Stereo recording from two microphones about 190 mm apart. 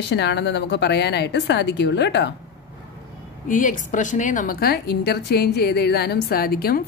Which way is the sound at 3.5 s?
45° left (ahead or behind).